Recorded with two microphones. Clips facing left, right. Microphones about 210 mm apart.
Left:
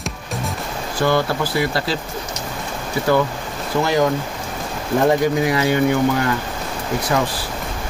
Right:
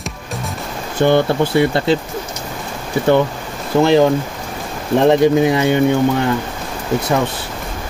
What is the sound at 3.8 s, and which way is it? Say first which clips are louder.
Speech: right 6 dB; 25° right (ahead or behind).